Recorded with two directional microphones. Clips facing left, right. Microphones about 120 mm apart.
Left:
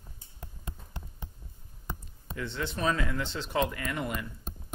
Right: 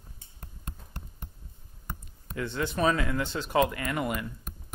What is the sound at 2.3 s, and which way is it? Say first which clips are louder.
Speech: right 3 dB; 55° right (ahead or behind).